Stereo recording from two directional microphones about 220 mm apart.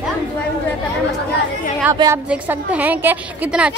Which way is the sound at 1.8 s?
15° right (ahead or behind).